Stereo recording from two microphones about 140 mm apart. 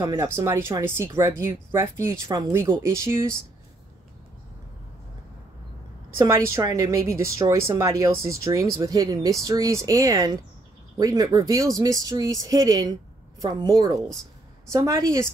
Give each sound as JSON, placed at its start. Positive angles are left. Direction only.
{"t": 0.0, "sound": "a woman's voice", "side_deg": -25}
{"t": 6.1, "sound": "a woman's voice", "side_deg": -20}